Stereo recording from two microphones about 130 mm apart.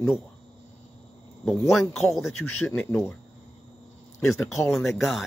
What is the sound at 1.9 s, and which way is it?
Speech, centre (ahead or behind).